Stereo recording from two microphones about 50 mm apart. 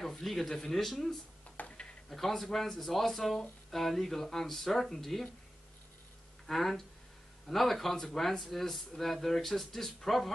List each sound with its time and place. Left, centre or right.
0.0 s speech: centre
1.6 s a sound: left
2.0 s speech: centre
6.4 s speech: centre